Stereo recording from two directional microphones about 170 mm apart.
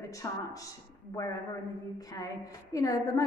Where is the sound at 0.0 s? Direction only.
20° left (ahead or behind).